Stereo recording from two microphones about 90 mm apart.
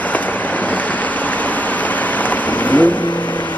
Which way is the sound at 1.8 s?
20° left (ahead or behind).